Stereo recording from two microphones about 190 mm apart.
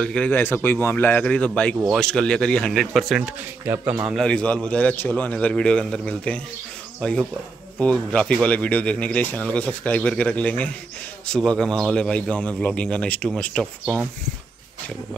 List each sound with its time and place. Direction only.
0.0 s speech: 5° left (ahead or behind); by 4.0 s 10° right (ahead or behind)
4.1 s speech: 5° left (ahead or behind)